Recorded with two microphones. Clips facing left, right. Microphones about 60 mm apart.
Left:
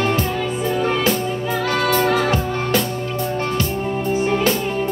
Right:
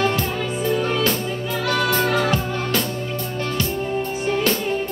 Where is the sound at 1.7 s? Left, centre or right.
Left.